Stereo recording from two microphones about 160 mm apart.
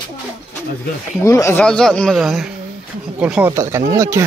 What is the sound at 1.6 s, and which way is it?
Speech, 5° left (ahead or behind).